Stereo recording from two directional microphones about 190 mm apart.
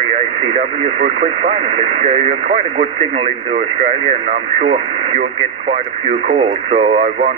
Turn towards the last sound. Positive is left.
turn(degrees=-30)  # may be behind; listen again after turning